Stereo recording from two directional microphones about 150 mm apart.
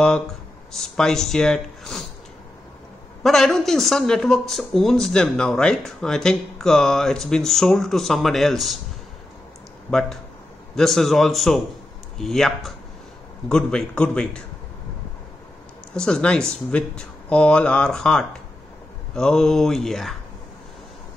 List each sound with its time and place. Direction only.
0.7 s speech: centre (ahead or behind)
3.3 s speech: centre (ahead or behind)
9.8 s speech: 5° left (ahead or behind)
15.9 s speech: 5° left (ahead or behind)